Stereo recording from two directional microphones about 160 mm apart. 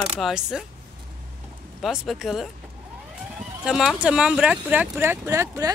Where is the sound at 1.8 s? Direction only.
Centre (ahead or behind).